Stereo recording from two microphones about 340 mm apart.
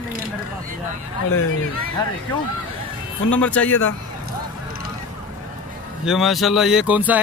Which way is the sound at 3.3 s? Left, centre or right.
Centre.